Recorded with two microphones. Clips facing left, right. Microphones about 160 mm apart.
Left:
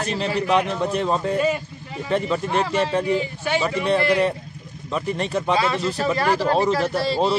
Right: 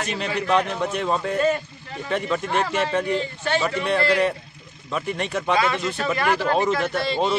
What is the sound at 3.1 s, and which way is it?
Speech, 10° left (ahead or behind).